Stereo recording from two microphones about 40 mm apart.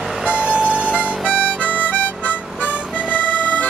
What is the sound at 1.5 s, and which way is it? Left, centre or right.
Harmonica, right.